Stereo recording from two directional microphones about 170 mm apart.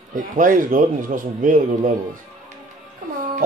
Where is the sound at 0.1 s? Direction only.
50° right (ahead or behind).